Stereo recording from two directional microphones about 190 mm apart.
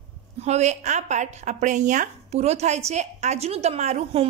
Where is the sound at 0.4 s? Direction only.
35° right (ahead or behind).